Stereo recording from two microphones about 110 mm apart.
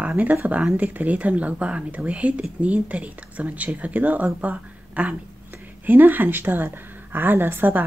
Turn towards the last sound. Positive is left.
turn(degrees=-15)  # may be behind; listen again after turning